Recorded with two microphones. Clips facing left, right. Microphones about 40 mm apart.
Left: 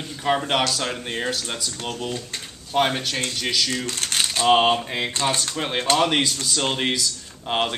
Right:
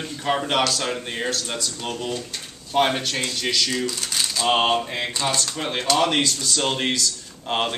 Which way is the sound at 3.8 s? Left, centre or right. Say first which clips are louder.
Left 1 dB; left.